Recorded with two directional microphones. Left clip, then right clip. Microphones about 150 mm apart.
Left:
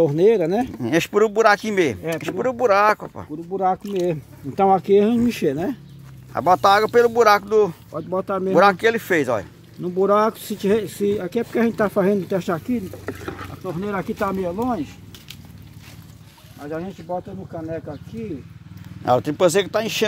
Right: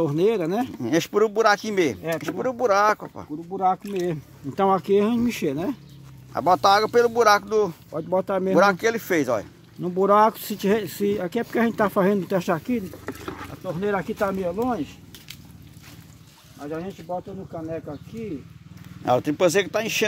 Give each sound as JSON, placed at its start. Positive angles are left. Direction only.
{"t": 0.0, "sound": "speech", "side_deg": 0}
{"t": 0.7, "sound": "speech", "side_deg": 15}
{"t": 4.0, "sound": "speech", "side_deg": -10}
{"t": 5.2, "sound": "speech", "side_deg": 5}
{"t": 7.9, "sound": "speech", "side_deg": -35}
{"t": 8.5, "sound": "speech", "side_deg": 10}
{"t": 9.8, "sound": "speech", "side_deg": -40}
{"t": 13.0, "sound": "speech", "side_deg": 0}
{"t": 13.7, "sound": "speech", "side_deg": -25}
{"t": 16.5, "sound": "speech", "side_deg": -5}
{"t": 19.0, "sound": "speech", "side_deg": 10}